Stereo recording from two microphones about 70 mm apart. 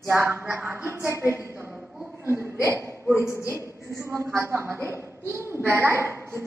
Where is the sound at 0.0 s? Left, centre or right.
Right.